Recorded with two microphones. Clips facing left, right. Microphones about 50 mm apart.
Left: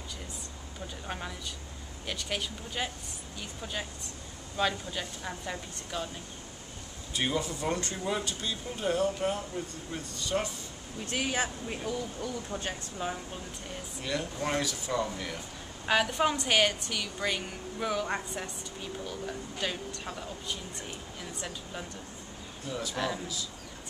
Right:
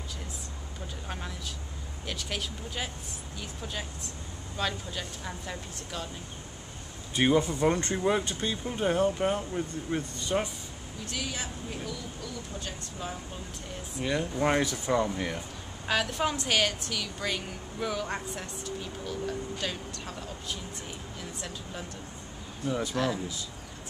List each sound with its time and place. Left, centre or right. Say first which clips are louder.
1.0 s a woman's voice: left 1 dB; centre
7.2 s speech: right 7 dB; right
11.1 s speech: left 5 dB; left
14.0 s speech: right 5 dB; centre
15.9 s a woman's voice: left 2 dB; centre
22.7 s speech: right 5 dB; right
22.9 s a woman's voice: right 1 dB; centre